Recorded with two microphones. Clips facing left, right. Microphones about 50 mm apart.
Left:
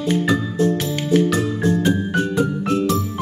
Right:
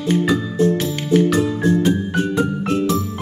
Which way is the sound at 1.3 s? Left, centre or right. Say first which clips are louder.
Right 2 dB; right.